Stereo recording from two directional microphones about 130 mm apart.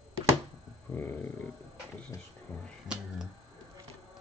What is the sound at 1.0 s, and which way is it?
Speech, 15° left (ahead or behind).